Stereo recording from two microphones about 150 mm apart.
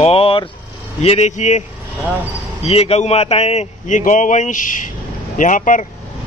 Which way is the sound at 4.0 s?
55° left (ahead or behind).